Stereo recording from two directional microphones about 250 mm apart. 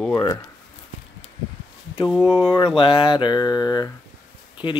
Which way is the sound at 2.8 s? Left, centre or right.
Centre.